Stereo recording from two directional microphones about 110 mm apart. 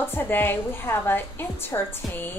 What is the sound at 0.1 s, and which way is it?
A woman's voice, 20° left (ahead or behind).